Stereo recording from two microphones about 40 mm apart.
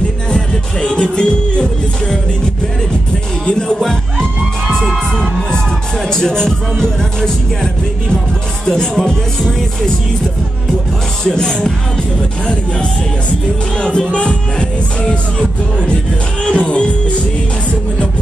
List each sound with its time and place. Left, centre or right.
0.3 s music: centre
3.4 s music: left
5.5 s music: centre
11.2 s music: centre
13.7 s music: left
16.4 s music: left